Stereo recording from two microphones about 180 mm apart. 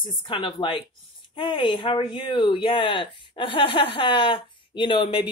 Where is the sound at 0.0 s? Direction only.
30° left (ahead or behind).